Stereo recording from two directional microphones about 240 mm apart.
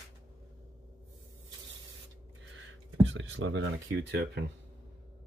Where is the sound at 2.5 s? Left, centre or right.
Right.